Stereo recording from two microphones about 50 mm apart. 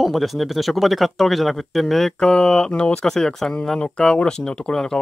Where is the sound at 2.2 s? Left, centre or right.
Centre.